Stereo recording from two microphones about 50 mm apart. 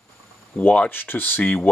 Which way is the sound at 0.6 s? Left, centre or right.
Left.